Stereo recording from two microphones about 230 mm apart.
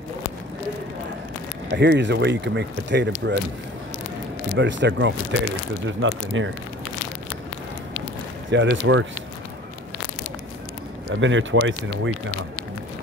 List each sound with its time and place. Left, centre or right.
1.7 s speech: right
4.6 s speech: right
8.5 s speech: right
11.1 s speech: right